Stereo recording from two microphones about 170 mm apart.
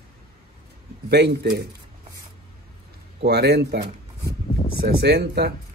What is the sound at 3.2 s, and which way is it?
Speech, 75° right (ahead or behind).